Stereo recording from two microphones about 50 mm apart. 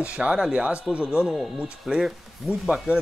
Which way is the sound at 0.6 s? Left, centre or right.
Right.